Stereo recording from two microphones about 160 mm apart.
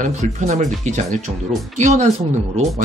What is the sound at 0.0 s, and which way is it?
Speech, 50° right (ahead or behind).